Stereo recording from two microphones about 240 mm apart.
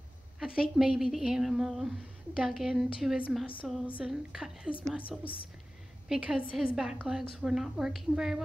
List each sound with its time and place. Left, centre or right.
0.6 s a woman's voice: centre
5.2 s a woman's voice: left
6.0 s a woman's voice: centre